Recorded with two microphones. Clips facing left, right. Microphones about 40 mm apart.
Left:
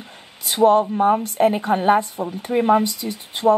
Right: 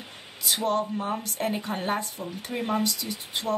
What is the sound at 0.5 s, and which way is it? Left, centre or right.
Speech, left.